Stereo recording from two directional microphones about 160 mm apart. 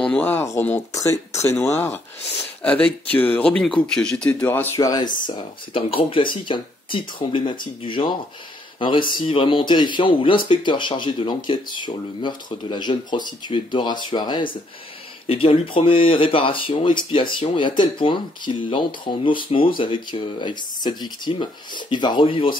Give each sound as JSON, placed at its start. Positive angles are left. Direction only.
{"t": 0.0, "sound": "speech", "side_deg": 10}
{"t": 5.2, "sound": "speech", "side_deg": 35}